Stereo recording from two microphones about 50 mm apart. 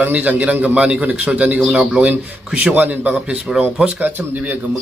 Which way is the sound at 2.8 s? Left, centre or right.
Right.